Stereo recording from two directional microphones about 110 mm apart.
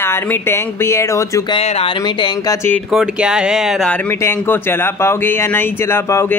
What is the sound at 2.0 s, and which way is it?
Speech, 40° left (ahead or behind).